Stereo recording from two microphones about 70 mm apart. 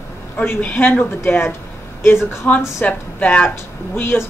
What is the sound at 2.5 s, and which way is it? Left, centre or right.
Speech, left.